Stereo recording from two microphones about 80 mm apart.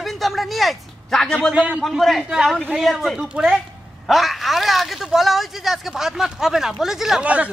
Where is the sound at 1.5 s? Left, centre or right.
Centre.